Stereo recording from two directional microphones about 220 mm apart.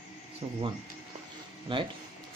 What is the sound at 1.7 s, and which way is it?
Speech, 25° right (ahead or behind).